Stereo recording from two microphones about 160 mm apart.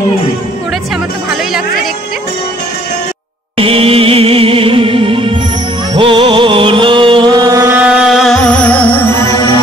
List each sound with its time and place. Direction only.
3.5 s music: 35° right (ahead or behind); by 7.8 s 20° right (ahead or behind)
7.8 s music: 5° right (ahead or behind); by 9.6 s 25° left (ahead or behind)